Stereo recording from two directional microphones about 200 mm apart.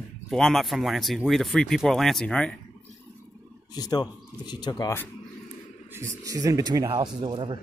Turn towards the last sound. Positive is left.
turn(degrees=-25)  # may be behind; listen again after turning